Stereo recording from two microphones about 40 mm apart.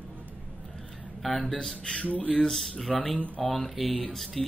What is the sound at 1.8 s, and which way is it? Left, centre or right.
Speech, left.